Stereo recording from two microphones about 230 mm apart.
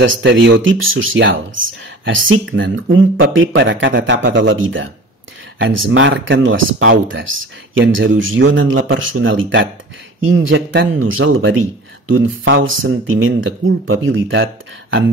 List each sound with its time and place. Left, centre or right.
0.0 s speech: right